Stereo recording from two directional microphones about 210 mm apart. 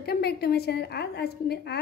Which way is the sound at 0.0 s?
50° left (ahead or behind).